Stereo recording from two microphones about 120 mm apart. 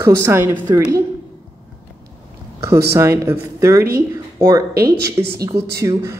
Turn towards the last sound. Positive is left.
turn(degrees=-25)  # may be behind; listen again after turning